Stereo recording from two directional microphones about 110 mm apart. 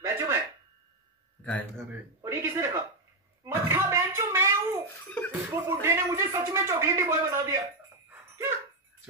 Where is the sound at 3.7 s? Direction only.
25° right (ahead or behind).